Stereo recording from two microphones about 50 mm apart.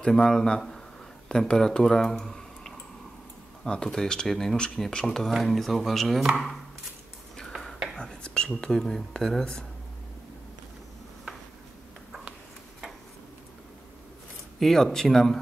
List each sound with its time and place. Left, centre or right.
0.1 s speech: centre
5.3 s speech: centre
7.9 s dishes: centre
8.5 s speech: centre
14.6 s speech: centre